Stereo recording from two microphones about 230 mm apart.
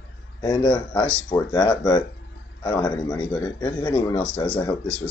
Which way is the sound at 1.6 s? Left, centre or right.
Centre.